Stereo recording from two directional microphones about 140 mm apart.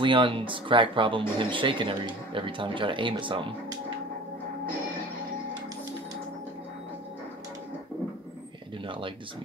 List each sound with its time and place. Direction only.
0.0 s speech: 35° right (ahead or behind)